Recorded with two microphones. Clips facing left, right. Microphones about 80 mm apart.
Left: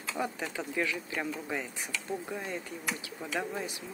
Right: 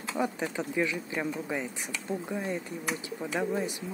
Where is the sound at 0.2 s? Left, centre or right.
Centre.